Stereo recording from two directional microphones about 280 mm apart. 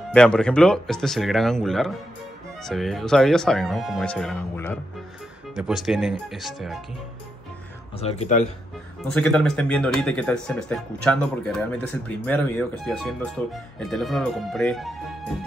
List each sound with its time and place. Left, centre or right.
0.1 s speech: centre
8.0 s speech: left
9.0 s speech: centre